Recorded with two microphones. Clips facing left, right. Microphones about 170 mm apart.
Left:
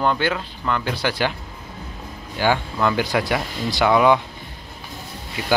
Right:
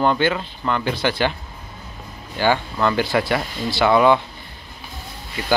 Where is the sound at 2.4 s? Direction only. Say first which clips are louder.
Right 1 dB; 10° left (ahead or behind).